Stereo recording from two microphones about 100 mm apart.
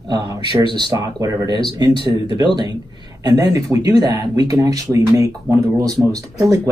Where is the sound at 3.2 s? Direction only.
35° right (ahead or behind).